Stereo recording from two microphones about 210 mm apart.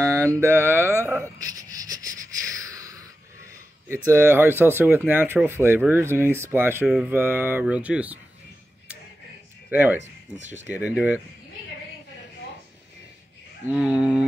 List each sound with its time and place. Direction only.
0.0 s mantra: 15° right (ahead or behind)
0.4 s speech: 10° right (ahead or behind)
2.7 s a sound: 15° right (ahead or behind)
3.9 s speech: 10° right (ahead or behind)
9.7 s speech: 10° right (ahead or behind)
10.3 s speech: 35° right (ahead or behind)
10.7 s speech: 5° right (ahead or behind)
13.7 s a sound: 5° right (ahead or behind)